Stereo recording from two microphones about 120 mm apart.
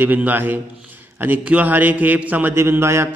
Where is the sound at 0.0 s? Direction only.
15° right (ahead or behind).